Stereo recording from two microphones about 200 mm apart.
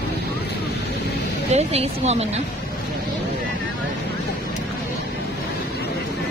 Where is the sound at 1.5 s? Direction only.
30° right (ahead or behind).